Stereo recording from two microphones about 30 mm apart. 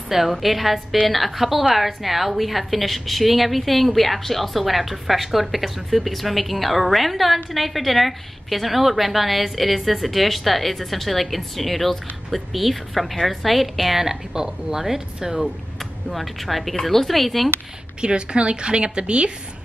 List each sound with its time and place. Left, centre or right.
0.1 s a woman's voice: centre
13.9 s speech: centre
16.1 s a woman's voice: centre
18.0 s a woman's voice: right